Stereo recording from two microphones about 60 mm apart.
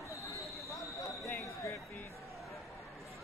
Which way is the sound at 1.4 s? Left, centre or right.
Left.